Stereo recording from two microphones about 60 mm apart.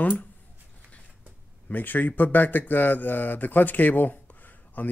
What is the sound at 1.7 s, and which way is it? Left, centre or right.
Speech, left.